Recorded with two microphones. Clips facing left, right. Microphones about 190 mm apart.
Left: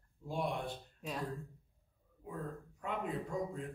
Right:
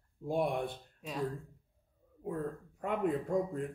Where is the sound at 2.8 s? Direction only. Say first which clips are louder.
Right 7 dB; 55° right (ahead or behind).